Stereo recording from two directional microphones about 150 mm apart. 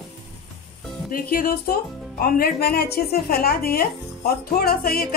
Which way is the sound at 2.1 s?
80° left.